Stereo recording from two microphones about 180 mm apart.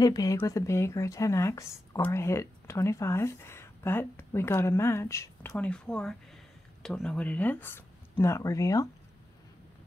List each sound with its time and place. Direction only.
0.0 s a woman's voice: 20° left (ahead or behind)